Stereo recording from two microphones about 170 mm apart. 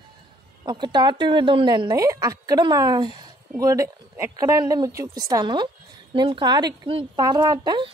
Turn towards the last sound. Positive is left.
turn(degrees=-25)  # may be behind; listen again after turning